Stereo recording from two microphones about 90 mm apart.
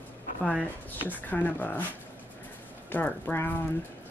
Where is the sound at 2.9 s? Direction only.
20° left (ahead or behind).